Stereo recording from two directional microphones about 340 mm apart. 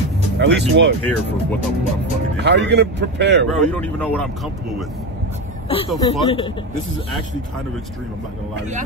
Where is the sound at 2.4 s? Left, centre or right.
Right.